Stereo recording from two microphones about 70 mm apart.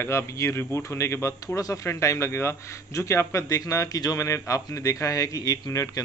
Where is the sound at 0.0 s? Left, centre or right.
Left.